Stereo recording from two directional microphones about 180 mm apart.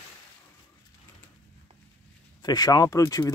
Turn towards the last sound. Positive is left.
turn(degrees=20)  # may be behind; listen again after turning